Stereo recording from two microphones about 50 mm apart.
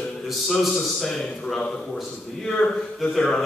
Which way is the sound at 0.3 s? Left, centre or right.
Centre.